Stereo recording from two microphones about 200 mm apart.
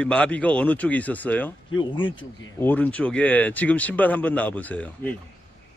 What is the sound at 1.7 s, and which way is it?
Speech, 25° left (ahead or behind).